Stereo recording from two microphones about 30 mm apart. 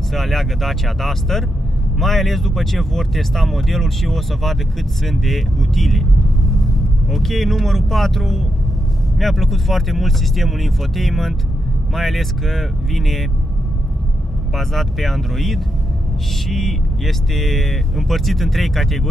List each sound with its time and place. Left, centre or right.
0.1 s speech: centre
7.1 s speech: centre
14.5 s speech: centre